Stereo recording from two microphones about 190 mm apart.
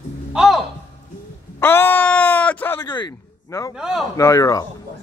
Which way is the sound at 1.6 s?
10° left (ahead or behind).